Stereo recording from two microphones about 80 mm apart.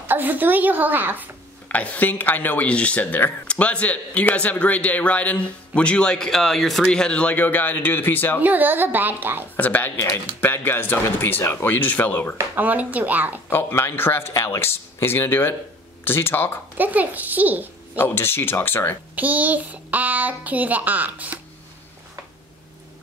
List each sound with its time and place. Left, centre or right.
0.0 s a child's voice: right
1.7 s speech: left
8.4 s a child's voice: right
9.6 s speech: left
12.5 s a child's voice: right
13.5 s speech: left
16.7 s a child's voice: right
17.9 s speech: left
19.1 s a child's voice: right